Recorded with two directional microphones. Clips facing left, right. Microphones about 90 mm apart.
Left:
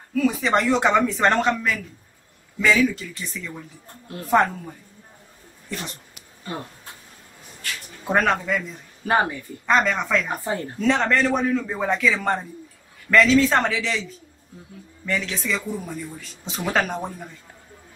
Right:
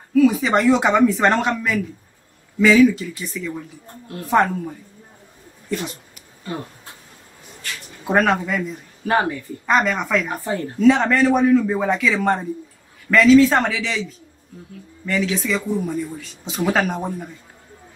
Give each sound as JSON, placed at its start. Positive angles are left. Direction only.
{"t": 0.1, "sound": "speech", "side_deg": 0}
{"t": 8.0, "sound": "speech", "side_deg": -5}
{"t": 10.3, "sound": "speech", "side_deg": 15}
{"t": 10.8, "sound": "speech", "side_deg": -5}